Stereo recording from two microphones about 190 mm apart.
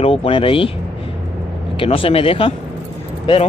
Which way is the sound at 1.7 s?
30° left (ahead or behind).